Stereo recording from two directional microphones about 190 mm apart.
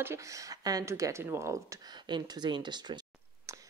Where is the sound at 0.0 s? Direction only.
15° right (ahead or behind).